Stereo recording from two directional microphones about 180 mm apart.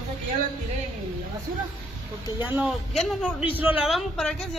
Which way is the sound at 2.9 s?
5° left (ahead or behind).